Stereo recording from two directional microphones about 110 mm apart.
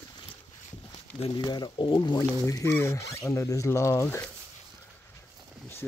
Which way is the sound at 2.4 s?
30° left (ahead or behind).